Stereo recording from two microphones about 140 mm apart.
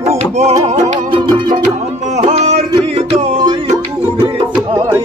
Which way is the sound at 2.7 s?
40° right (ahead or behind).